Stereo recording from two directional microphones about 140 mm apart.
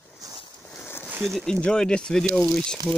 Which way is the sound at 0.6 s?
15° left (ahead or behind).